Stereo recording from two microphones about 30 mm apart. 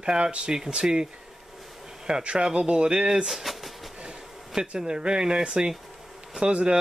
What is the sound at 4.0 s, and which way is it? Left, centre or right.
Speech, right.